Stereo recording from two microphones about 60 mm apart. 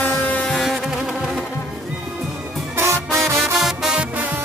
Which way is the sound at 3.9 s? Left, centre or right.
Right.